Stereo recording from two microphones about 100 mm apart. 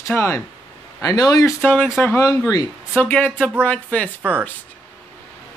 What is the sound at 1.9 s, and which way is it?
Speech, 25° left (ahead or behind).